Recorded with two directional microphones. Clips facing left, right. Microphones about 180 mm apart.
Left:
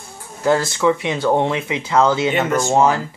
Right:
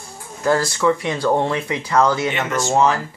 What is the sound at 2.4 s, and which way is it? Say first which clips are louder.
Speech: left 2 dB; 10° left (ahead or behind).